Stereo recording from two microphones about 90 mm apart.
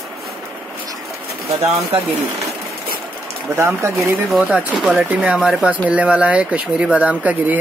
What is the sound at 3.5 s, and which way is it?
Speech, 30° right (ahead or behind).